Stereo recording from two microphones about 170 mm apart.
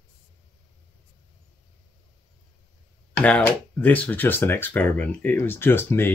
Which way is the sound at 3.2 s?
5° left (ahead or behind).